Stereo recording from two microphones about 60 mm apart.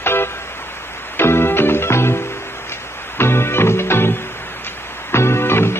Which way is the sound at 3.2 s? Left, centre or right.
Left.